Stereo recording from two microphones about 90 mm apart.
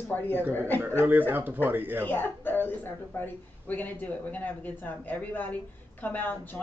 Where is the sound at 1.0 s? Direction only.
20° right (ahead or behind).